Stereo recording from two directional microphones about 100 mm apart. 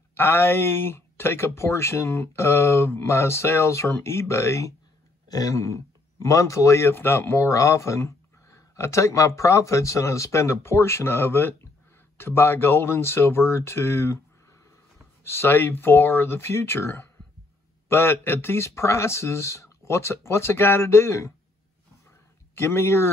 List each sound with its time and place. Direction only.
0.1 s speech: 25° left (ahead or behind)
5.3 s a sound: 35° left (ahead or behind)
6.2 s speech: 30° left (ahead or behind)
15.2 s speech: 25° left (ahead or behind)
22.6 s speech: 25° left (ahead or behind)